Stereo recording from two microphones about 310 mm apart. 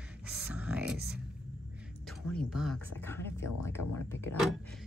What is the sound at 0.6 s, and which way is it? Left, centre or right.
Music, centre.